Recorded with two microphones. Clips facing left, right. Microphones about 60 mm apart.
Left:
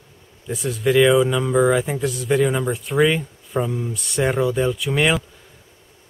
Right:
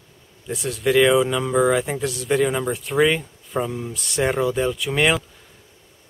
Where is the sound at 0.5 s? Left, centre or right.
Centre.